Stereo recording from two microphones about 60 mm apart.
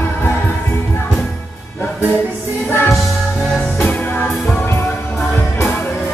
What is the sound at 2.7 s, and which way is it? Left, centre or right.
Music, left.